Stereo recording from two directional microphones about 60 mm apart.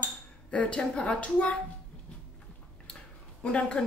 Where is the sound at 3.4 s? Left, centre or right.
Centre.